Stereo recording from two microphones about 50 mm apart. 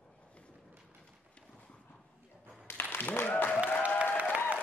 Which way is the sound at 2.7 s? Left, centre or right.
Left.